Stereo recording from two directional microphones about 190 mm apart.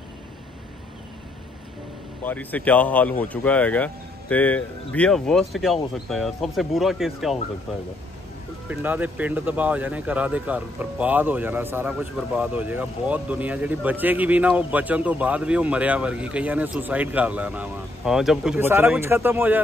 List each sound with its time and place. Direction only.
2.2 s speech: 10° left (ahead or behind)
8.6 s speech: 10° right (ahead or behind)